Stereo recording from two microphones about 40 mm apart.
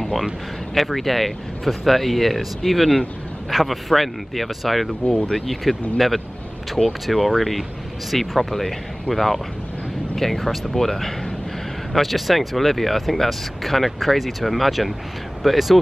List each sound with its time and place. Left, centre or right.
0.0 s speech: centre
5.0 s speech: left
5.3 s speech: centre